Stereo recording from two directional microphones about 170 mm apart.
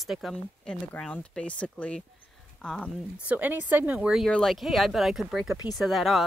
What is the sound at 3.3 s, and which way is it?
Speech, 10° right (ahead or behind).